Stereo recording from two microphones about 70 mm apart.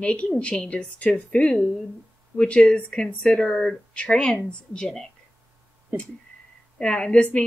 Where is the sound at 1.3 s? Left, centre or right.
Centre.